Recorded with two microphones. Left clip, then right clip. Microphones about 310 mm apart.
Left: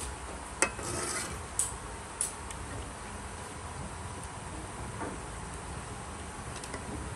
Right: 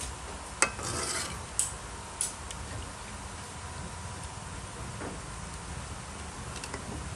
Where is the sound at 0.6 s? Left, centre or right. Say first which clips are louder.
Right 2 dB; centre.